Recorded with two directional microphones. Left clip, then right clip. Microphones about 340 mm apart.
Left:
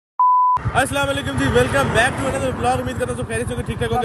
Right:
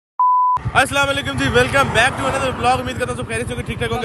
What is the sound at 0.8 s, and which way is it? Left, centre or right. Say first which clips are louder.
Speech: right 3 dB; centre.